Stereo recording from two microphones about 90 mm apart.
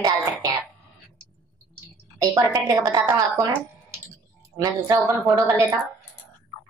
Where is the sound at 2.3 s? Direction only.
45° right (ahead or behind).